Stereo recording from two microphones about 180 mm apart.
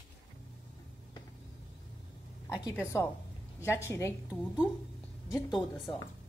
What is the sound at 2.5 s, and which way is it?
A woman's voice, 20° left (ahead or behind).